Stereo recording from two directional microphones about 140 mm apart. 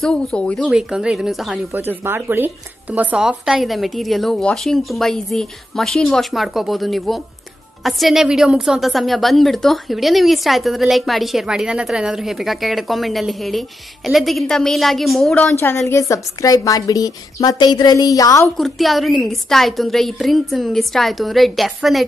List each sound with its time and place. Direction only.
0.0 s a woman's voice: 5° left (ahead or behind)
0.7 s a woman's voice: 5° right (ahead or behind)
1.7 s a woman's voice: 15° right (ahead or behind); by 15.5 s centre (ahead or behind)
15.6 s a woman's voice: 20° left (ahead or behind)
18.6 s a woman's voice: centre (ahead or behind)